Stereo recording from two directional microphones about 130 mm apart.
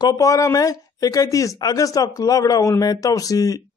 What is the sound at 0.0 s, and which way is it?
A man's voice, 30° left (ahead or behind).